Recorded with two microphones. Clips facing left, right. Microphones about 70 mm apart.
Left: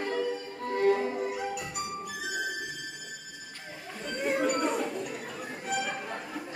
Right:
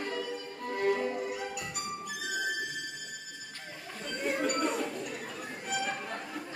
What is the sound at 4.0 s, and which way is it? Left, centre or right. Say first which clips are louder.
Music: left 3 dB; centre.